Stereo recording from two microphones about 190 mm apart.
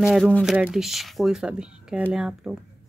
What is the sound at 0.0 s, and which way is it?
Speech, centre (ahead or behind).